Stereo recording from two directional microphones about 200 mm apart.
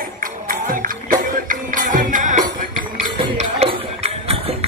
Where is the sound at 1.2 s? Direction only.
40° right (ahead or behind).